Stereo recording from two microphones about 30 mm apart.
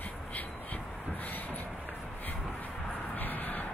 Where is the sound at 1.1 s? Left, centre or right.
Left.